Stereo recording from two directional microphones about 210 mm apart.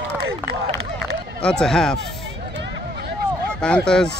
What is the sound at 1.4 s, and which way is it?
Speech, 5° left (ahead or behind).